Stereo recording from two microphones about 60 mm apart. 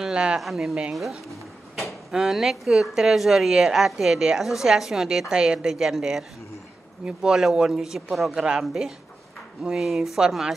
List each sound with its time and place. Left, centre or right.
0.0 s speech: centre
0.4 s speech: centre
1.8 s drawer open or close: centre
2.1 s a woman's voice: centre